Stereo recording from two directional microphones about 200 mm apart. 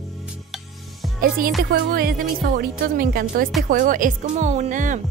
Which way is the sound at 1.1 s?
45° right (ahead or behind).